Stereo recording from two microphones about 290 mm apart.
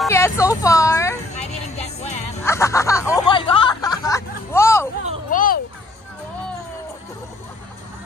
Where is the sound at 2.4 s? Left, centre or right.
Centre.